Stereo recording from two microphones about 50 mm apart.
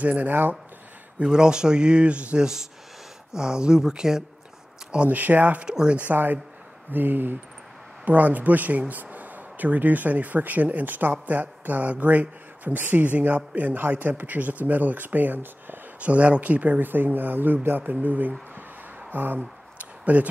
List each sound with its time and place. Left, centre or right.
0.0 s speech: right
0.3 s speech: right
1.2 s speech: centre
2.4 s speech: centre
4.9 s speech: right
5.7 s speech: centre
6.1 s speech: right
16.0 s speech: right
19.0 s a sound: right
20.1 s speech: right